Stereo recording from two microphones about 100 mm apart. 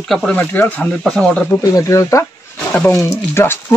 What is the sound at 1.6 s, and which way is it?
Speech, 35° left (ahead or behind).